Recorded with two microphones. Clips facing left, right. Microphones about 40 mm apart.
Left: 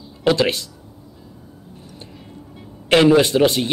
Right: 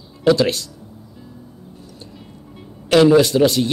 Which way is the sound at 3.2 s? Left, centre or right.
Left.